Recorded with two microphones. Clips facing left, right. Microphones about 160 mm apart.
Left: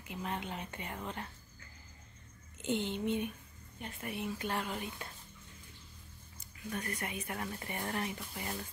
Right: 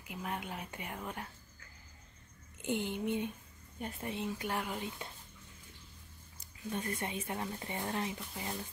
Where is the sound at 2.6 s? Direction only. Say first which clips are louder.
Left 1 dB; 15° right (ahead or behind).